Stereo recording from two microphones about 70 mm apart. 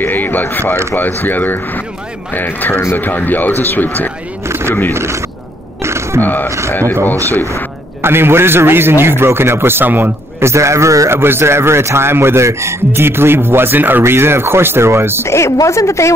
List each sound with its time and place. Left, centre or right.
0.0 s a sound: left
0.9 s speech: left
4.5 s vehicle: right
4.9 s a man's voice: right
5.8 s a sound: right
6.2 s speech: left
8.0 s a man's voice: right
10.4 s a man's voice: right
15.2 s speech: left